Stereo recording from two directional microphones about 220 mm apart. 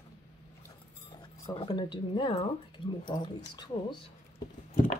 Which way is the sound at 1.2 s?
20° left (ahead or behind).